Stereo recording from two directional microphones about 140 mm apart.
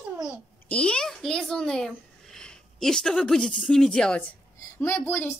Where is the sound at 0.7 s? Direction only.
10° left (ahead or behind).